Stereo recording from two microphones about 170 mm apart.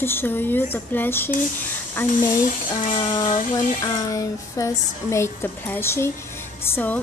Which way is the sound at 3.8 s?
20° left (ahead or behind).